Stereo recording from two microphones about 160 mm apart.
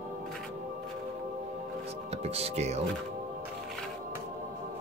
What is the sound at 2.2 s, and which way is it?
Speech, 40° right (ahead or behind).